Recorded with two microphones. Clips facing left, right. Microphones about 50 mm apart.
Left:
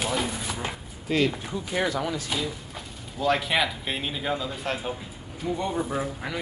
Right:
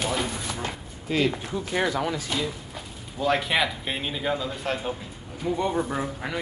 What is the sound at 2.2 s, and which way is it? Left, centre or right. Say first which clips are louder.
Speech: right 1 dB; centre.